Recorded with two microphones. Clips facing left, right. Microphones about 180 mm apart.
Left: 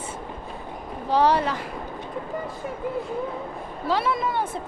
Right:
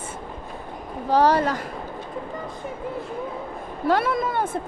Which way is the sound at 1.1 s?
45° right (ahead or behind).